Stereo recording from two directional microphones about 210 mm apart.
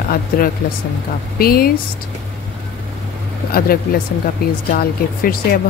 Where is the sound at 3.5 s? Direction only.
45° left (ahead or behind).